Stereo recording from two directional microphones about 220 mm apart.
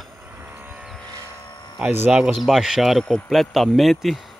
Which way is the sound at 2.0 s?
5° right (ahead or behind).